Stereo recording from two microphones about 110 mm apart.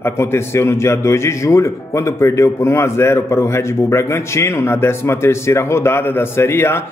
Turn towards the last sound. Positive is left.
turn(degrees=20)  # may be behind; listen again after turning